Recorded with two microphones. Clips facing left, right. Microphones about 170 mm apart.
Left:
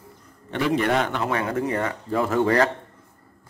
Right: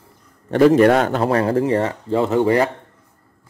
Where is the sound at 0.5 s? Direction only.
45° right (ahead or behind); by 2.6 s 20° right (ahead or behind).